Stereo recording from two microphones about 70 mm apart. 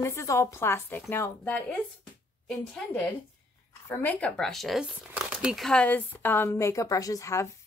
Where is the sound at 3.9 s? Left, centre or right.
Left.